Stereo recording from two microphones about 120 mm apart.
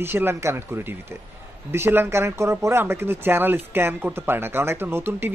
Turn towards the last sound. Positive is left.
turn(degrees=-20)  # may be behind; listen again after turning